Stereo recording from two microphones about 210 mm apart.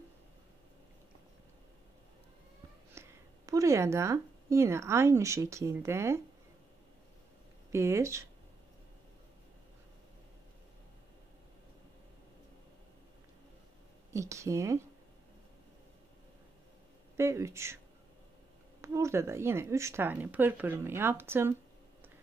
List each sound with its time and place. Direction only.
2.9 s speech: 15° right (ahead or behind)
7.7 s a woman's voice: 10° right (ahead or behind)
14.1 s a woman's voice: 15° right (ahead or behind)
17.2 s a woman's voice: 15° right (ahead or behind)
18.8 s a woman's voice: 15° right (ahead or behind)